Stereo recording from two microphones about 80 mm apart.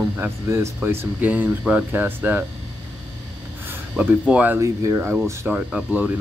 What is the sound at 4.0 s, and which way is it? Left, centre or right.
Speech, centre.